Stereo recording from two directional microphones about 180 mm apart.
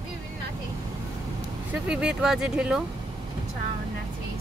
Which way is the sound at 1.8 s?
5° right (ahead or behind).